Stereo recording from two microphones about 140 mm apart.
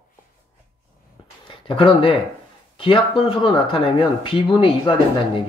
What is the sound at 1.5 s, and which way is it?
Speech, 40° left (ahead or behind).